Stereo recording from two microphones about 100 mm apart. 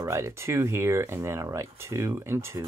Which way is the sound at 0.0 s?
30° right (ahead or behind).